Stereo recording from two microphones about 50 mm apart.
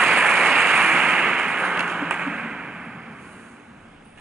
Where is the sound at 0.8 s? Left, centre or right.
Right.